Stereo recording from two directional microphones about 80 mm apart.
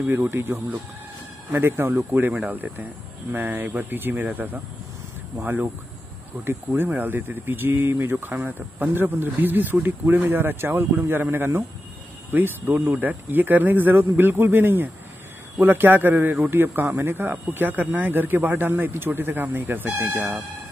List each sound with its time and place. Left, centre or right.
0.0 s speech: right